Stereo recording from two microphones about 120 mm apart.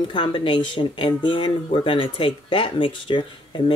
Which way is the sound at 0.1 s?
40° left (ahead or behind).